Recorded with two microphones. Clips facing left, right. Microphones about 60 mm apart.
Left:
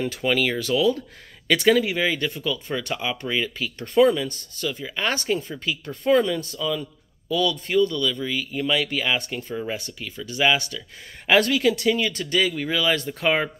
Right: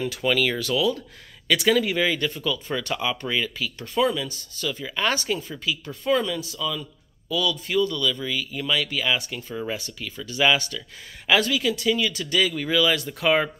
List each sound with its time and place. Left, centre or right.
0.2 s speech: left
3.5 s speech: left; by 5.1 s centre
5.1 s a man's voice: left
11.2 s speech: left
12.0 s speech: left
12.9 s speech: left